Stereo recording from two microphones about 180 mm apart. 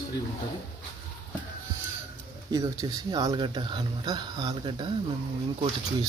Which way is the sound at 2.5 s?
20° right (ahead or behind).